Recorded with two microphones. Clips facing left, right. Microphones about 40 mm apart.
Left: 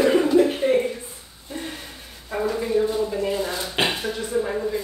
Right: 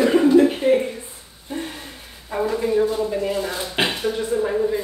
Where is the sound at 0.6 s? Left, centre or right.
Centre.